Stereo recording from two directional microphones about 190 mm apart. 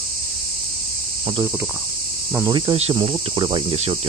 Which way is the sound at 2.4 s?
25° right (ahead or behind).